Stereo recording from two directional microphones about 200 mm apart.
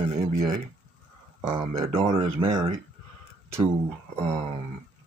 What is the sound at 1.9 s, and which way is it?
Speech, 30° right (ahead or behind).